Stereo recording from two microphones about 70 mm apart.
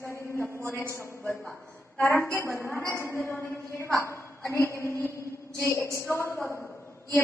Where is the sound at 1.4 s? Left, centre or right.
Centre.